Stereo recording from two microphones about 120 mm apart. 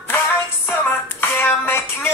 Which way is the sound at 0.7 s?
15° left (ahead or behind).